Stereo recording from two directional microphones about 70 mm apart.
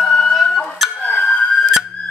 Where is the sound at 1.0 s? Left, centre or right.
Centre.